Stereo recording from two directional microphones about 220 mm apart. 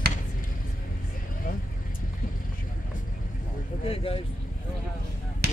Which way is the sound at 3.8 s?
25° left (ahead or behind).